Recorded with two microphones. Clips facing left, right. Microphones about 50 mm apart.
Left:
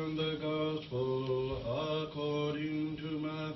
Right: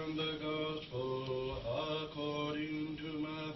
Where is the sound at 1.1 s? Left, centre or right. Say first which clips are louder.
Left 4 dB; centre.